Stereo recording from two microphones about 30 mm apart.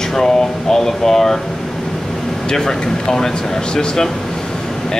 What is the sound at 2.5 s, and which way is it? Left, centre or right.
Speech, left.